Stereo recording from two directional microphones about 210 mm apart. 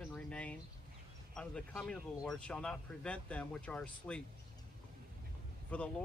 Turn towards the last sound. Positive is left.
turn(degrees=5)  # may be behind; listen again after turning